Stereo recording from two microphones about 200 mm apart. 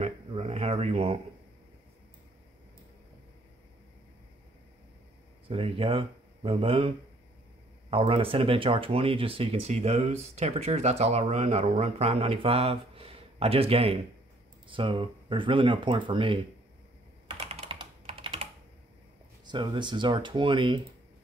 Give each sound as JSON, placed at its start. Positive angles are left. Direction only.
{"t": 0.0, "sound": "a sound", "side_deg": -30}
{"t": 5.5, "sound": "speech", "side_deg": -30}
{"t": 7.9, "sound": "speech", "side_deg": -30}
{"t": 17.3, "sound": "computer keyboard", "side_deg": -30}
{"t": 19.4, "sound": "speech", "side_deg": -20}